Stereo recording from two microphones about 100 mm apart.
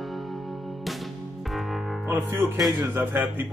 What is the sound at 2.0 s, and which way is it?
Speech, 20° right (ahead or behind).